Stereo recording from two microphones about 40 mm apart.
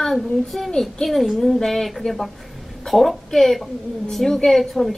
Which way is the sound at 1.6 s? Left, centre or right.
Centre.